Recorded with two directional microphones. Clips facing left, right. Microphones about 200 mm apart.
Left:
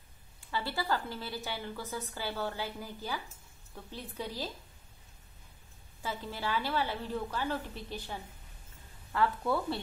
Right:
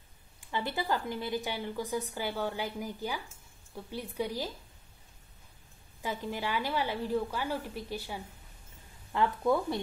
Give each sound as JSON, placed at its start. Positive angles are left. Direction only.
{"t": 0.5, "sound": "a woman's voice", "side_deg": -20}
{"t": 6.0, "sound": "a woman's voice", "side_deg": -15}